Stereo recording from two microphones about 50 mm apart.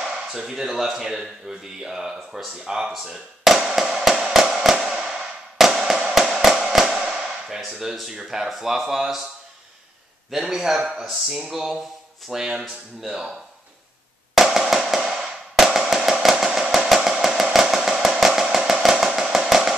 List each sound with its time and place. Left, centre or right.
0.0 s speech: centre
3.1 s tap: centre
4.0 s music: centre
7.8 s speech: centre
10.3 s speech: centre
14.3 s drum: centre
15.0 s music: centre
15.5 s a sound: centre
16.6 s drum: centre
16.9 s a sound: centre